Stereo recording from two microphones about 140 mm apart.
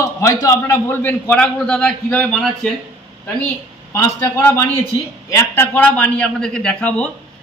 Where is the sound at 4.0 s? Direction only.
20° left (ahead or behind).